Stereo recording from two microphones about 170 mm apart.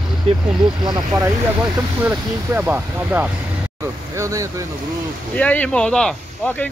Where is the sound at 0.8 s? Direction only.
25° right (ahead or behind).